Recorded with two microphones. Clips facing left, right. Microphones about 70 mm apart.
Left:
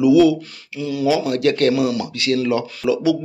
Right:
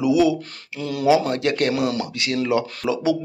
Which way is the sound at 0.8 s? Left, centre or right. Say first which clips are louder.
Left 2 dB; right.